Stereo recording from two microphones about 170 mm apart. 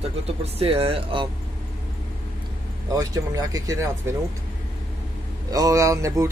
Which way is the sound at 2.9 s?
20° right (ahead or behind).